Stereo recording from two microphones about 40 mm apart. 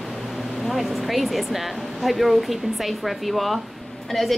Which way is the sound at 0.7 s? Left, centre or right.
Centre.